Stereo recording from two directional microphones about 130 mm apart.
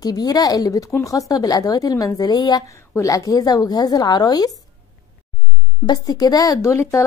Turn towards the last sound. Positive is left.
turn(degrees=20)  # may be behind; listen again after turning